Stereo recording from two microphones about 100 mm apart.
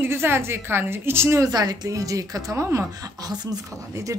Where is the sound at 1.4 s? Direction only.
40° right (ahead or behind).